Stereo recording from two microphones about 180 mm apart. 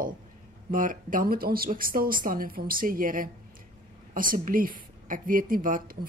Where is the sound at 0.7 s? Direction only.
50° right (ahead or behind).